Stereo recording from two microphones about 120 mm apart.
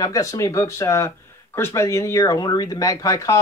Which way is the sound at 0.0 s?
30° left (ahead or behind).